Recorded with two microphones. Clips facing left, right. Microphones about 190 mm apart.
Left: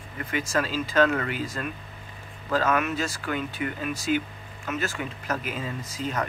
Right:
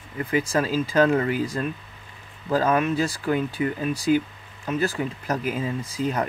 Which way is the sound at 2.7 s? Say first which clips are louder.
Right 4 dB; 30° right (ahead or behind).